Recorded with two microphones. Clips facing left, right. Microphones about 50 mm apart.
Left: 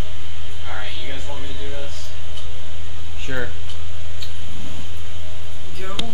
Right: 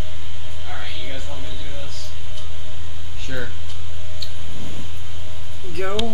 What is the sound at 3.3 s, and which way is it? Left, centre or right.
Speech, left.